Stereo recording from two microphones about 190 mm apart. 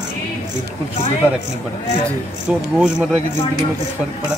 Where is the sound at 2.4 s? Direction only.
5° right (ahead or behind).